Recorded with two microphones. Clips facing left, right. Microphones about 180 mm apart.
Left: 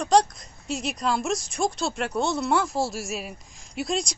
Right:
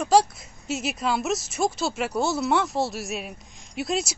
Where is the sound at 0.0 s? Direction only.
5° right (ahead or behind).